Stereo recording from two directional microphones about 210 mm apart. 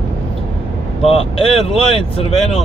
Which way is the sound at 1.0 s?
25° left (ahead or behind).